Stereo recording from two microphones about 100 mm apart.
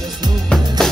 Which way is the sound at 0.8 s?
5° left (ahead or behind).